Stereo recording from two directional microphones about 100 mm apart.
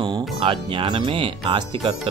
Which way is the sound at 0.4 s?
60° right (ahead or behind).